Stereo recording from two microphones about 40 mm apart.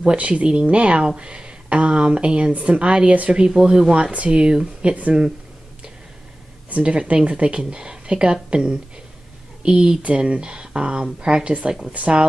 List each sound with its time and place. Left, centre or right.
0.0 s speech: right
3.9 s speech: right
6.8 s speech: right
11.9 s speech: right